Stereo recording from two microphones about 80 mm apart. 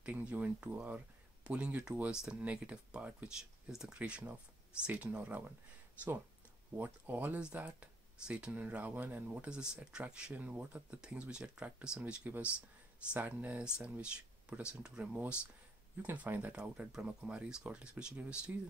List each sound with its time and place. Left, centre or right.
0.0 s speech: centre
6.8 s speech: right
16.0 s speech: right